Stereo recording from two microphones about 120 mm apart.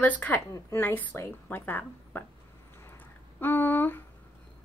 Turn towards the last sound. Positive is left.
turn(degrees=15)  # may be behind; listen again after turning